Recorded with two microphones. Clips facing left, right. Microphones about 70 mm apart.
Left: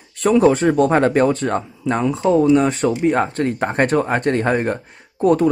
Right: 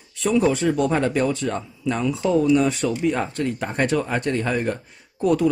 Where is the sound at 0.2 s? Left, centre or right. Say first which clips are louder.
Left 6 dB; left.